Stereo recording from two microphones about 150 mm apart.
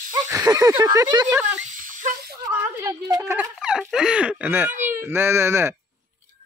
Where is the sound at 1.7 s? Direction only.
60° right (ahead or behind).